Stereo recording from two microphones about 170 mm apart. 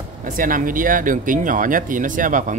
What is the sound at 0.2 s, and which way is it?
Speech, 50° right (ahead or behind).